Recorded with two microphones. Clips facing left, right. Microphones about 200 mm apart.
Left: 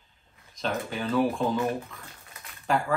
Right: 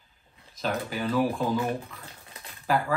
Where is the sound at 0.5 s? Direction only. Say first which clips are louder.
Even; 5° right (ahead or behind).